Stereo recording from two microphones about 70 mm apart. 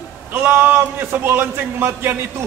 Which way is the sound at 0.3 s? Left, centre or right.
Right.